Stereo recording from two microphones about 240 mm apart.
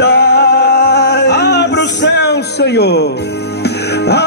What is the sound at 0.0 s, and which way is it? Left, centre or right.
Music, left.